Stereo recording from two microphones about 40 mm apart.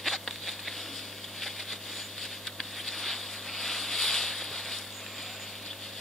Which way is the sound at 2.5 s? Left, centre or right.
Centre.